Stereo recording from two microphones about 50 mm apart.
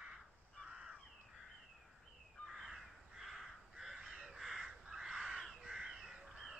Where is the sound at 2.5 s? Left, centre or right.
Centre.